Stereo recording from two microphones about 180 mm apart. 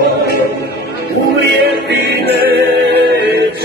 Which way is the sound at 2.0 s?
65° right (ahead or behind).